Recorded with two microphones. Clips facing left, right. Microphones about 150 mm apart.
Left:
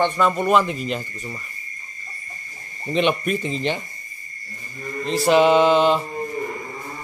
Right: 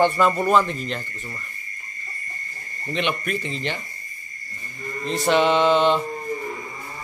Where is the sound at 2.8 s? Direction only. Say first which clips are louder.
Left 5 dB; 20° left (ahead or behind).